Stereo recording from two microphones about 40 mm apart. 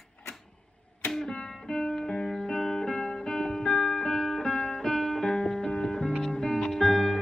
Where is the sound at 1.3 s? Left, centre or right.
Centre.